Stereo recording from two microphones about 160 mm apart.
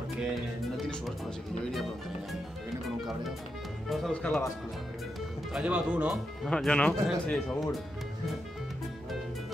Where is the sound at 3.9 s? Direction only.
Centre (ahead or behind).